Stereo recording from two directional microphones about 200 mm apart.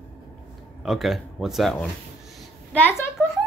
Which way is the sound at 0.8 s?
Centre (ahead or behind).